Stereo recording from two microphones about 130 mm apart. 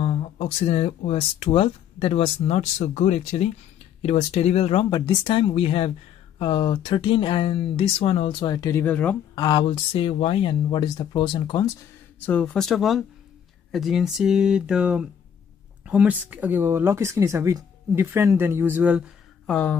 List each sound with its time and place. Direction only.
0.0 s speech: 55° left (ahead or behind)
4.8 s speech: 35° left (ahead or behind)
8.5 s speech: 25° left (ahead or behind)
8.8 s speech: 10° left (ahead or behind)
9.3 s speech: 35° left (ahead or behind)
12.3 s speech: 10° left (ahead or behind); by 19.0 s 15° right (ahead or behind)
19.4 s speech: 10° left (ahead or behind)